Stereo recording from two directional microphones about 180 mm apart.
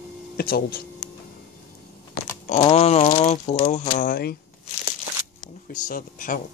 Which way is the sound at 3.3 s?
35° left (ahead or behind).